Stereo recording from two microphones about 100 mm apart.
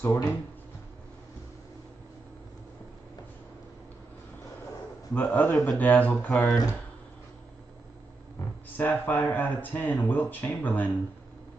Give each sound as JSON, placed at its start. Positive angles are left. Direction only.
{"t": 0.0, "sound": "speech", "side_deg": 30}
{"t": 5.1, "sound": "a man's voice", "side_deg": 20}
{"t": 6.3, "sound": "speech", "side_deg": 5}
{"t": 8.7, "sound": "a man's voice", "side_deg": 20}